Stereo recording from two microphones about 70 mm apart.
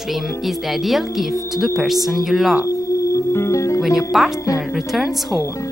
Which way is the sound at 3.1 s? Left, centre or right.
Left.